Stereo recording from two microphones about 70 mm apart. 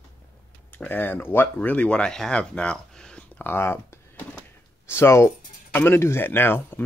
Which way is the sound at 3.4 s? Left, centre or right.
Left.